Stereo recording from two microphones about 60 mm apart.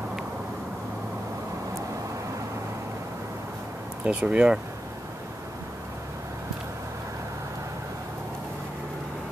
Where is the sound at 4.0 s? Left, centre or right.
Centre.